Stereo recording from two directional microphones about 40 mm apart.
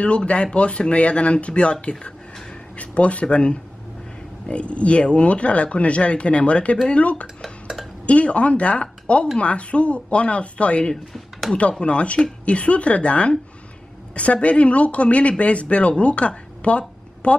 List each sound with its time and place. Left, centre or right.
0.0 s speech: left